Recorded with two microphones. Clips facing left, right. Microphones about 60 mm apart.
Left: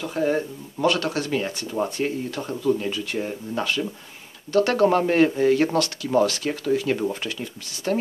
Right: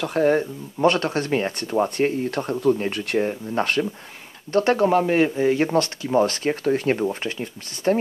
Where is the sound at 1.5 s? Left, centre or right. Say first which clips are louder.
Right 4 dB; right.